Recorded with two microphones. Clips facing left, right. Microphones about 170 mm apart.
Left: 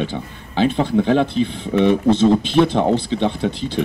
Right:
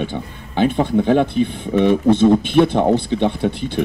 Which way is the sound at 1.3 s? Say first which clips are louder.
Right 1 dB; 55° right (ahead or behind).